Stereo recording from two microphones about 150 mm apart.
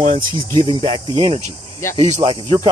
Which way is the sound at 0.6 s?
35° right (ahead or behind).